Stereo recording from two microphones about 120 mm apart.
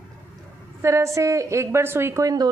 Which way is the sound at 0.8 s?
25° right (ahead or behind).